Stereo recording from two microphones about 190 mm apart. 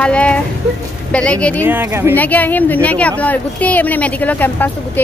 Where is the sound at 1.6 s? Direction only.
10° right (ahead or behind).